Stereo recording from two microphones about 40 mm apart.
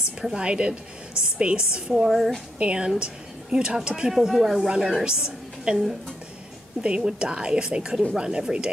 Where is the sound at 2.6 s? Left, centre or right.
Right.